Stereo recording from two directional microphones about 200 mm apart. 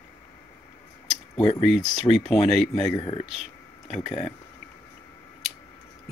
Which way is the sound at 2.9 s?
25° left (ahead or behind).